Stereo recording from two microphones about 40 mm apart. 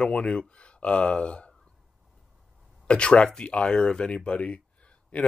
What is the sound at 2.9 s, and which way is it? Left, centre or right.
Speech, left.